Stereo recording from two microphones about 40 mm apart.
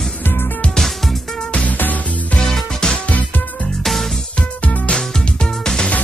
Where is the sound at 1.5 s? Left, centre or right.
Left.